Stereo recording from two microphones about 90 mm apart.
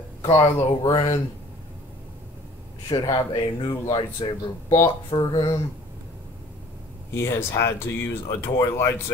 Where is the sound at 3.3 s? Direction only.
70° left (ahead or behind).